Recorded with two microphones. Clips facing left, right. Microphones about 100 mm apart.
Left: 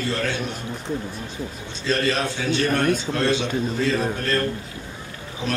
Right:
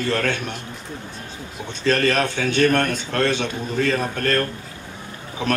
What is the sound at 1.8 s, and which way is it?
Speech, 55° right (ahead or behind).